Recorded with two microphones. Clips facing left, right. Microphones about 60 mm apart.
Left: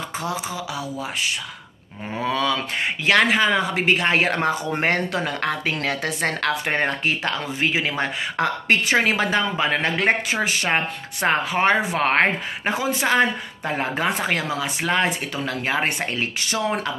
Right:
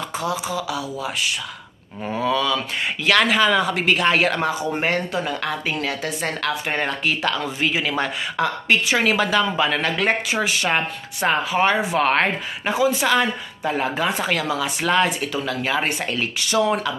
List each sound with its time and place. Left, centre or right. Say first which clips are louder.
0.2 s speech: right 4 dB; left
3.1 s speech: right 1 dB; left
4.7 s a woman's voice: even; left